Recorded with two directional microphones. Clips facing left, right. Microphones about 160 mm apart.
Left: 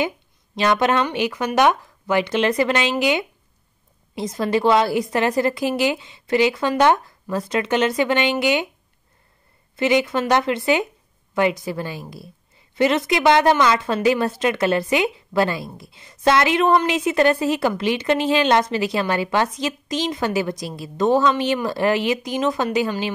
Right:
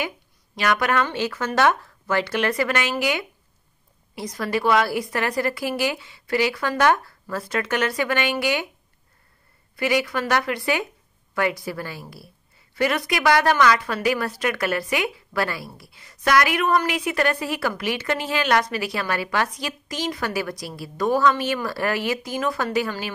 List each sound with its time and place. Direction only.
0.6 s a woman's voice: 25° left (ahead or behind)
9.8 s a woman's voice: 20° left (ahead or behind)